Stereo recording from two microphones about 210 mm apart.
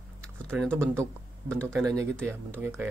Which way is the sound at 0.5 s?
5° right (ahead or behind).